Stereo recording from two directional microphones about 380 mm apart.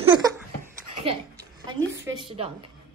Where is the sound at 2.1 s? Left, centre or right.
Centre.